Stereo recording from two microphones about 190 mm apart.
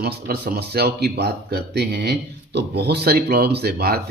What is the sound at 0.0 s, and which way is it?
Speech, 55° right (ahead or behind).